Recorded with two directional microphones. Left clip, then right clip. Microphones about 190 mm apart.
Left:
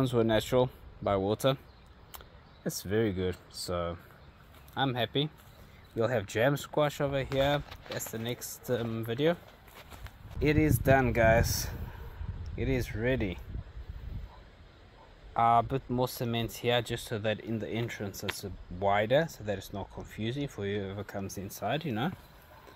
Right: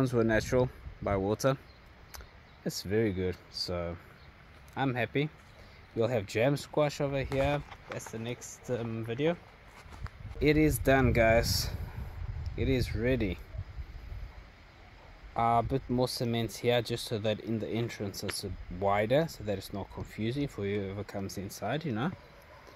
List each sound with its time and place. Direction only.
0.0 s speech: 5° right (ahead or behind)
2.9 s speech: 10° right (ahead or behind)
7.4 s speech: 15° left (ahead or behind)
10.4 s speech: 20° right (ahead or behind)
12.6 s speech: 20° right (ahead or behind)
15.3 s speech: 20° right (ahead or behind)